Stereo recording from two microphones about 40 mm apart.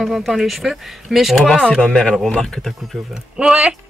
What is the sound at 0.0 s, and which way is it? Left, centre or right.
Speech, centre.